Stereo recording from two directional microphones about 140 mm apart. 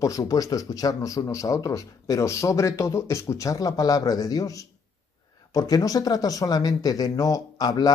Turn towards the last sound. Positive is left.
turn(degrees=30)  # may be behind; listen again after turning